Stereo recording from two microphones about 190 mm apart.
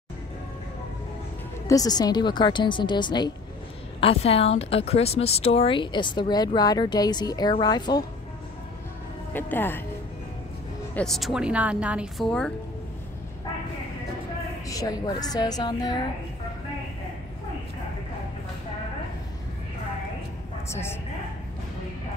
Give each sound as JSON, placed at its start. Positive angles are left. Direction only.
{"t": 1.7, "sound": "a woman's voice", "side_deg": 20}
{"t": 9.3, "sound": "speech", "side_deg": 10}
{"t": 11.0, "sound": "a woman's voice", "side_deg": 0}
{"t": 14.7, "sound": "a woman's voice", "side_deg": 20}
{"t": 20.7, "sound": "speech", "side_deg": 15}